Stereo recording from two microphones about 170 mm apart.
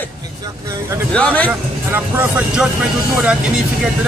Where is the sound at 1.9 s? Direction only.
10° right (ahead or behind).